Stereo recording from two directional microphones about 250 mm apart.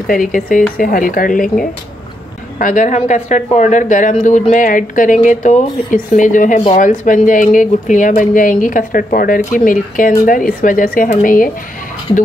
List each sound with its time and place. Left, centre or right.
0.0 s speech: left
2.6 s speech: left